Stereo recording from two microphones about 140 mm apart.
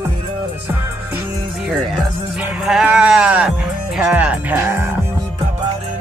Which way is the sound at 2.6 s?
5° right (ahead or behind).